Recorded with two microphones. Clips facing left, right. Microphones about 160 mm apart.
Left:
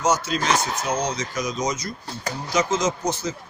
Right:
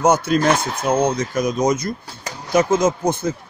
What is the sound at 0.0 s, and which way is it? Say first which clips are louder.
Speech: right 7 dB; 55° right (ahead or behind).